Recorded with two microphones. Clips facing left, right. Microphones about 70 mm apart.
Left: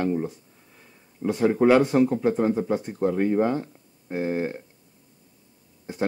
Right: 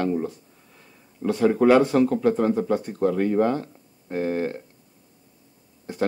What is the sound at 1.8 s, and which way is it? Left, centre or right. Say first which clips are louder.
Speech: right 1 dB; centre.